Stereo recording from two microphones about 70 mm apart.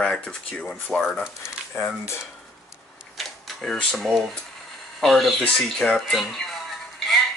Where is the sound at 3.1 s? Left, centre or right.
Centre.